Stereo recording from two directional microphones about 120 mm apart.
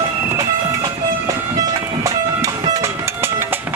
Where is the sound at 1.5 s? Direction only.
25° right (ahead or behind).